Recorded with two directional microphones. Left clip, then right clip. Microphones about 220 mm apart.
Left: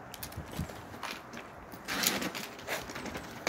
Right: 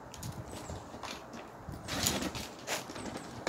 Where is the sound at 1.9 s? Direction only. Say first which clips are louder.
Left 2 dB; 5° left (ahead or behind).